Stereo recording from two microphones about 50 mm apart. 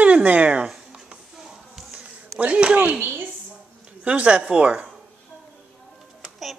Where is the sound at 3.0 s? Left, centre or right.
Right.